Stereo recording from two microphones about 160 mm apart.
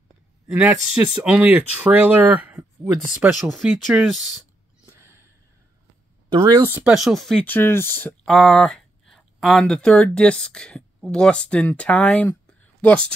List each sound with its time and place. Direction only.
1.2 s speech: 10° right (ahead or behind)
4.9 s a sound: 15° right (ahead or behind)
6.3 s speech: 20° right (ahead or behind)
6.7 s speech: 5° right (ahead or behind)
7.4 s speech: 15° left (ahead or behind)
8.3 s speech: centre (ahead or behind)